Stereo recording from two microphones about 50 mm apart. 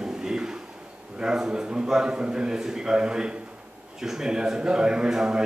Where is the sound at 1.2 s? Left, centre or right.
Centre.